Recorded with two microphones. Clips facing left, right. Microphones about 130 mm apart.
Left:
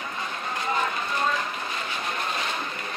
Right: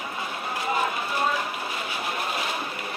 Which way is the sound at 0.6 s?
10° right (ahead or behind).